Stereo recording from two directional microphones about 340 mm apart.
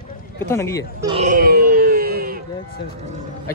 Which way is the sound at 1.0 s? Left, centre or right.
Centre.